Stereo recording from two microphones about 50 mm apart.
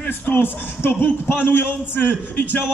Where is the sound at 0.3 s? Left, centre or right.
Left.